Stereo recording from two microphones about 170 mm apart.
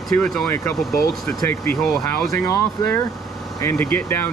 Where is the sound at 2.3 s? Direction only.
20° left (ahead or behind).